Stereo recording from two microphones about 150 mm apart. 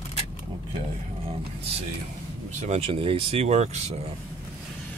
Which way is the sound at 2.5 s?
50° right (ahead or behind).